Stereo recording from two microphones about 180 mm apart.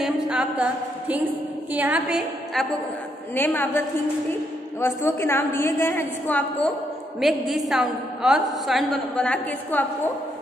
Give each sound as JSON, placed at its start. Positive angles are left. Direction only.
{"t": 0.0, "sound": "a woman's voice", "side_deg": -5}
{"t": 3.3, "sound": "a woman's voice", "side_deg": 10}